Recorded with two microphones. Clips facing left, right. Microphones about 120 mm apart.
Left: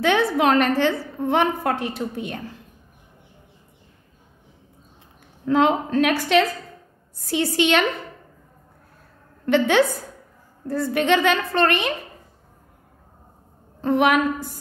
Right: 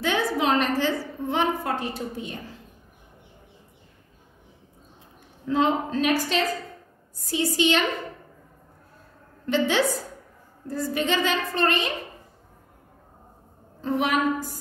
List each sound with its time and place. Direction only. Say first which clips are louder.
0.0 s a woman's voice: left 5 dB; 60° left (ahead or behind)
5.4 s a woman's voice: left 4 dB; 70° left (ahead or behind)
9.5 s a woman's voice: left 5 dB; 60° left (ahead or behind)
13.7 s a woman's voice: left 6 dB; 65° left (ahead or behind)